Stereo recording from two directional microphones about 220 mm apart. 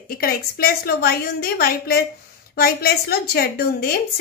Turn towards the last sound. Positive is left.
turn(degrees=45)  # may be behind; listen again after turning